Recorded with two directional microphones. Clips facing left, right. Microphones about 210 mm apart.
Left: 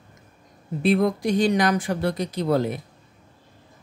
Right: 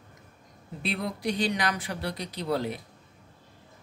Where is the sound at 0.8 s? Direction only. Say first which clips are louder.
Left 10 dB; 50° left (ahead or behind).